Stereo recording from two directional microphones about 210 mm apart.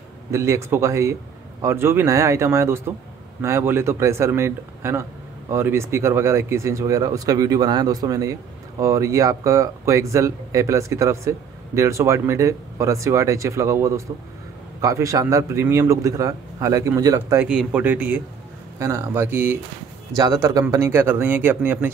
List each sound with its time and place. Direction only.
0.3 s speech: 15° right (ahead or behind)